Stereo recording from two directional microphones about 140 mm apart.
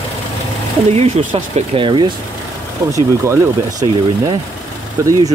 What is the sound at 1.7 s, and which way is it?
Speech, 35° right (ahead or behind).